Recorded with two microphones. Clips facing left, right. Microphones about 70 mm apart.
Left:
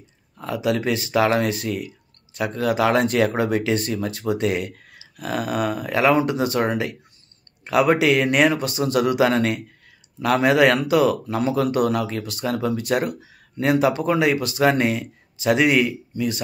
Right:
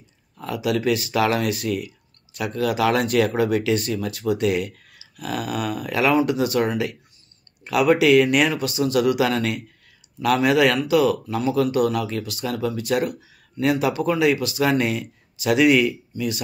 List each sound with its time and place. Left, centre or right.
0.4 s speech: left